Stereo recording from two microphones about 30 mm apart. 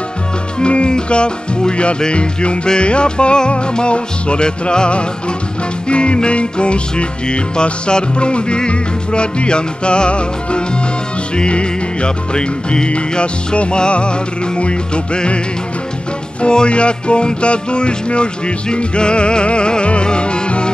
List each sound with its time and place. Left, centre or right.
0.6 s music: left
16.3 s music: left